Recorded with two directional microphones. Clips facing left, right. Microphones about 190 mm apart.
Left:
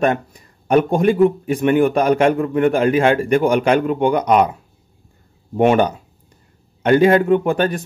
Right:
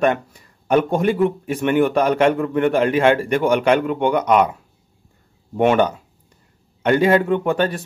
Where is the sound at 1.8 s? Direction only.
15° left (ahead or behind).